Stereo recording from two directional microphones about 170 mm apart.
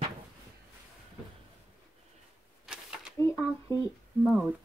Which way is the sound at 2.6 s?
5° right (ahead or behind).